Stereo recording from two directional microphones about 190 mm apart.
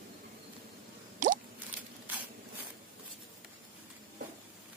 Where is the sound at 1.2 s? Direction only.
45° right (ahead or behind).